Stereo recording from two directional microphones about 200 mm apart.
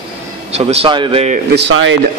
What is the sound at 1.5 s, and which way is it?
Speech, 65° right (ahead or behind).